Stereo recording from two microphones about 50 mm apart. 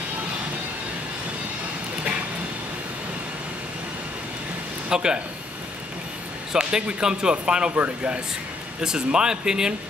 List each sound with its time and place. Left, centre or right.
4.8 s a man's voice: centre
6.5 s speech: centre
7.7 s speech: right
8.8 s speech: centre